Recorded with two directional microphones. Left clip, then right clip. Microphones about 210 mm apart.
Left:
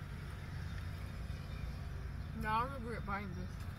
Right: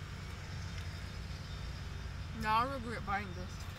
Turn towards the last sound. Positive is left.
turn(degrees=-20)  # may be behind; listen again after turning